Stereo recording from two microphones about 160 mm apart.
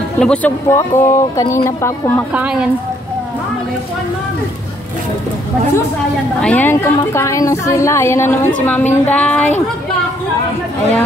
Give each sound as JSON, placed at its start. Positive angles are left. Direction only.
{"t": 0.2, "sound": "speech", "side_deg": 10}
{"t": 2.3, "sound": "a woman's voice", "side_deg": -5}
{"t": 6.4, "sound": "speech", "side_deg": 10}